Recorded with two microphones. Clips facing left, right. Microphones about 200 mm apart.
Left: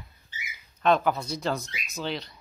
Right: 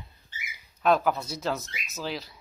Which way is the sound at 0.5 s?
5° right (ahead or behind).